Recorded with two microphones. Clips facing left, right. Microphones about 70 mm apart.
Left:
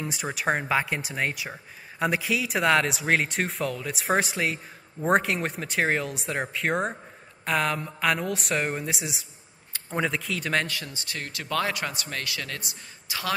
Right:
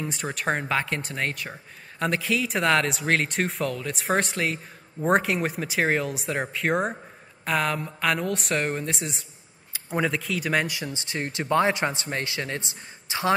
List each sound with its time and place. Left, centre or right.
0.0 s speech: centre
10.7 s a man's voice: right